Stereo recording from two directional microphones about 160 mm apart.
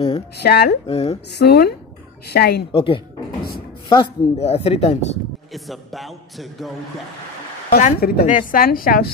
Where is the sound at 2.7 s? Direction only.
35° left (ahead or behind).